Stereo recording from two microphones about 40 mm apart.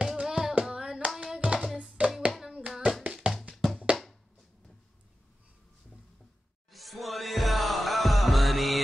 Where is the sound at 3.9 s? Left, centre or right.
Right.